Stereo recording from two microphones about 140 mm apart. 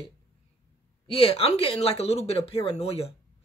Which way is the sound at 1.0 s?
40° left (ahead or behind).